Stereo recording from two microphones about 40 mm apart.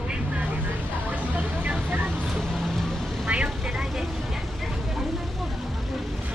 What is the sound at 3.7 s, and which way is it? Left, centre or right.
Vehicle, centre.